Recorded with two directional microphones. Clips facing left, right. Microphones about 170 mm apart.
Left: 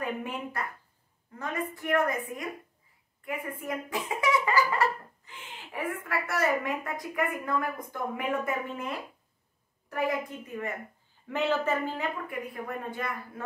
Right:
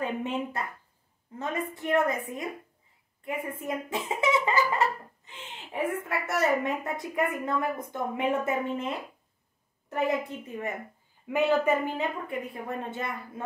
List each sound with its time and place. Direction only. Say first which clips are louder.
0.0 s speech: right 3 dB; 25° right (ahead or behind)
11.2 s speech: right 4 dB; 10° right (ahead or behind)